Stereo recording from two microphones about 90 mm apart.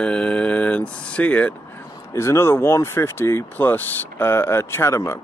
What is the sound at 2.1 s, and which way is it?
Speech, 30° left (ahead or behind).